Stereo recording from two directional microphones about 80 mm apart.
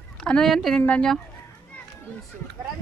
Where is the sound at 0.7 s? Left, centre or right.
Centre.